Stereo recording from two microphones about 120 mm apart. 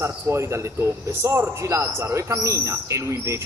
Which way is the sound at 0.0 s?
25° right (ahead or behind).